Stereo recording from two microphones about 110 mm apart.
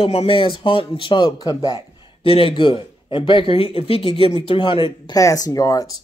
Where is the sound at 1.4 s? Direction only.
35° left (ahead or behind).